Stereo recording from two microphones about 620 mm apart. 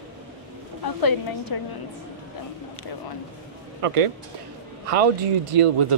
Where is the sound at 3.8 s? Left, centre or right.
Right.